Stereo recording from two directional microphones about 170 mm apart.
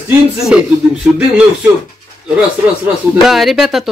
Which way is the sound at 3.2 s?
Centre (ahead or behind).